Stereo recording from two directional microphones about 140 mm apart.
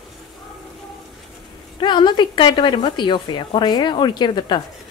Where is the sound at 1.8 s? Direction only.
35° left (ahead or behind).